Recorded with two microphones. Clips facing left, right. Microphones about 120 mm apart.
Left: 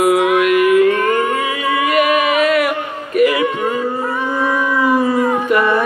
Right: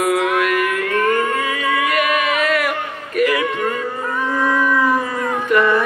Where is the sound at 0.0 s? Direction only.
10° left (ahead or behind).